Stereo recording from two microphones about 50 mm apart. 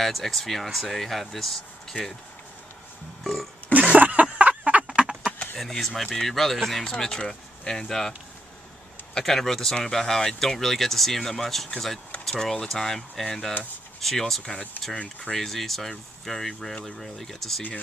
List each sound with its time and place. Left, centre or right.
0.0 s speech: centre
3.7 s a sound: right
4.9 s a sound: centre
5.6 s speech: centre
6.8 s speech: centre
9.1 s speech: centre
15.0 s speech: left
15.3 s speech: centre